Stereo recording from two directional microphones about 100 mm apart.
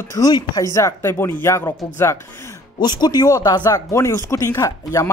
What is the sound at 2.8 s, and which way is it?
Speech, 45° left (ahead or behind).